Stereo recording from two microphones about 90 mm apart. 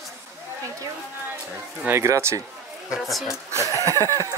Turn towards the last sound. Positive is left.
turn(degrees=30)  # may be behind; listen again after turning